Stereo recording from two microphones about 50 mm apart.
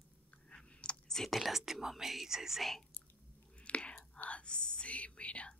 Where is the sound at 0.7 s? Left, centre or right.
Centre.